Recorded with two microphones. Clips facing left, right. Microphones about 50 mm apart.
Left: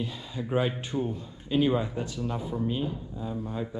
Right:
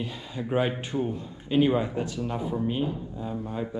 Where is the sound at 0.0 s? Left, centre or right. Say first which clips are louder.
Right 1 dB; right.